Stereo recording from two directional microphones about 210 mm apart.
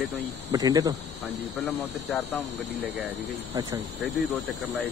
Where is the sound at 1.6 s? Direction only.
Centre (ahead or behind).